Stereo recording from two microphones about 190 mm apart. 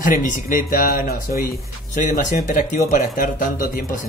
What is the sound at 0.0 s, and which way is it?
Speech, 45° left (ahead or behind).